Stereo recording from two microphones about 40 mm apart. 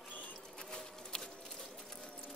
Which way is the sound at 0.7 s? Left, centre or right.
Centre.